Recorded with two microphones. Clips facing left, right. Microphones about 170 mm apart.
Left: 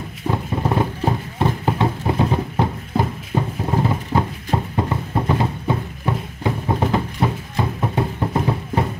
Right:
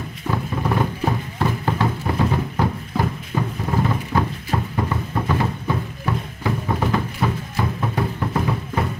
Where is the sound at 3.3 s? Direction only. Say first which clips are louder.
Left 3 dB; 30° left (ahead or behind).